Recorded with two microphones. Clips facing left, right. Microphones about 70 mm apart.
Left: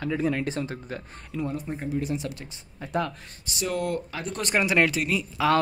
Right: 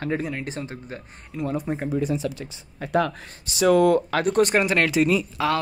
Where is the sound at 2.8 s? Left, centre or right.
Right.